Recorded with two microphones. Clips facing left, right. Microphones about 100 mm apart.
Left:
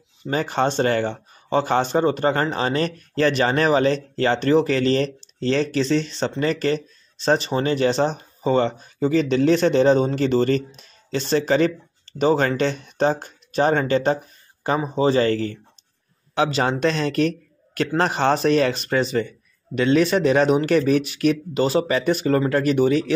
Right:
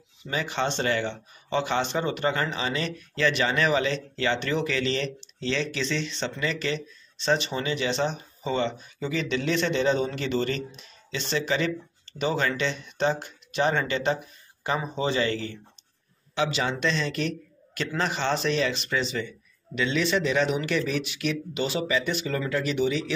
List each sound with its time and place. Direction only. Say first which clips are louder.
0.2 s a man's voice: left 7 dB; 45° left (ahead or behind)